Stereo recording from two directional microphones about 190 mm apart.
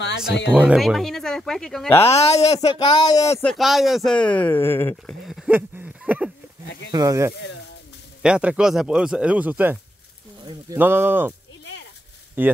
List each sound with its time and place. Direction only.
0.5 s speech: 5° right (ahead or behind)
2.0 s speech: 35° left (ahead or behind); by 3.4 s 15° left (ahead or behind)
3.4 s speech: centre (ahead or behind)
5.2 s a sound: centre (ahead or behind)
6.9 s speech: 15° right (ahead or behind)
10.8 s speech: 10° right (ahead or behind)
12.4 s speech: 10° right (ahead or behind)